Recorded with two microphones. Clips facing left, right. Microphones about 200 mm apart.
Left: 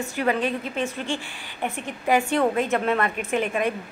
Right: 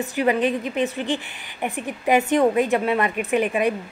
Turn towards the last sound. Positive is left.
turn(degrees=-15)  # may be behind; listen again after turning